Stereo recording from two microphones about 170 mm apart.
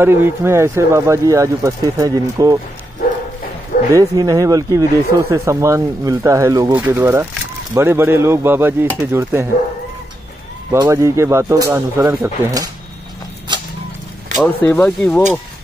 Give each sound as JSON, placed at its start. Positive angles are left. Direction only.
{"t": 0.0, "sound": "speech", "side_deg": -15}
{"t": 3.9, "sound": "speech", "side_deg": -20}
{"t": 10.7, "sound": "speech", "side_deg": -20}
{"t": 13.5, "sound": "a sound", "side_deg": -25}
{"t": 14.4, "sound": "speech", "side_deg": 10}